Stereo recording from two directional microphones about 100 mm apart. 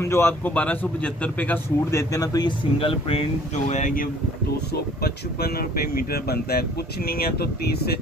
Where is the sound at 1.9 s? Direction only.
30° left (ahead or behind).